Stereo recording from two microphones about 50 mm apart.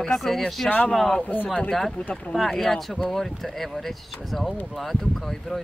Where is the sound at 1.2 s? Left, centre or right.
Left.